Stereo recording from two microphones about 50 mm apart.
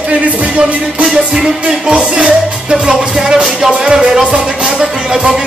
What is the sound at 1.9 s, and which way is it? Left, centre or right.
Music, right.